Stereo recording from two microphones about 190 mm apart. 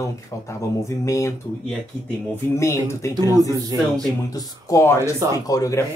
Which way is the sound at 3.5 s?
20° right (ahead or behind).